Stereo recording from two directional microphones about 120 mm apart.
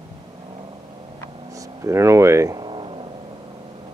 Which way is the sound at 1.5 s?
25° right (ahead or behind).